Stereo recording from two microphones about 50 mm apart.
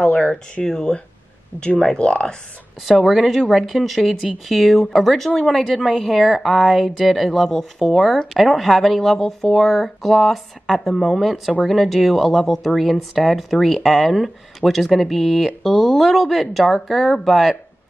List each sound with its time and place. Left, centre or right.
0.1 s speech: left
1.5 s speech: right
2.0 s speech: centre
2.8 s speech: centre